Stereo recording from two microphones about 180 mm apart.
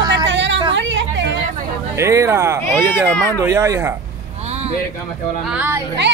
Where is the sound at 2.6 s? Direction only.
10° left (ahead or behind).